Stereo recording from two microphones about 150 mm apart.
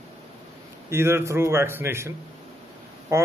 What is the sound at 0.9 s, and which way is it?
A man's voice, 15° right (ahead or behind).